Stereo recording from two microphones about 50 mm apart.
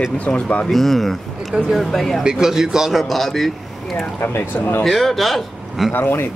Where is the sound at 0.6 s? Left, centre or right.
Centre.